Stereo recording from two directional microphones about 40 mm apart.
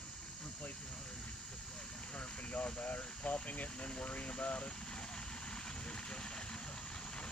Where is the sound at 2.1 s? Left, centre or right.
Left.